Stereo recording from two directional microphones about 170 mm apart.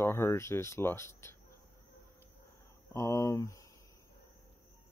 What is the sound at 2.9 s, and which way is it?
Speech, 20° left (ahead or behind).